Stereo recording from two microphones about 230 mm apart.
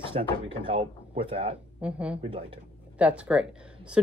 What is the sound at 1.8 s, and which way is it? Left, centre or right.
Speech, centre.